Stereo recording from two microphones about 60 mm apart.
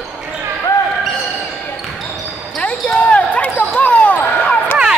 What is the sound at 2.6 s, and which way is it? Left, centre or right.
Basketball bounce, centre.